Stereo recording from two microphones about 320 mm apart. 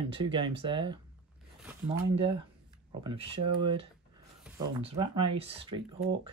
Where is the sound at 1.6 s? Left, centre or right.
Centre.